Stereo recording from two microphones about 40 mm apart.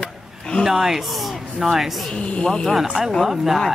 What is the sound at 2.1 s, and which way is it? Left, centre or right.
Speech, centre.